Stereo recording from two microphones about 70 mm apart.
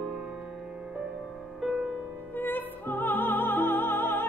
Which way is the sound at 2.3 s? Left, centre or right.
Left.